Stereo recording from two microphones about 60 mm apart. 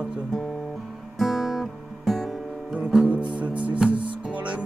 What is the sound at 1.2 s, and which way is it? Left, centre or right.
Guitar, centre.